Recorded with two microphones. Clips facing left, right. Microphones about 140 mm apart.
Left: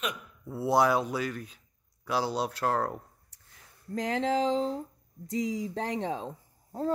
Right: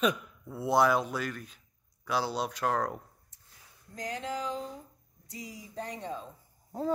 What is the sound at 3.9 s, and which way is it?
Speech, 90° left.